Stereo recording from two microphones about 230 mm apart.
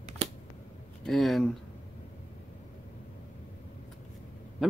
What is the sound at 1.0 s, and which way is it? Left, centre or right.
Speech, centre.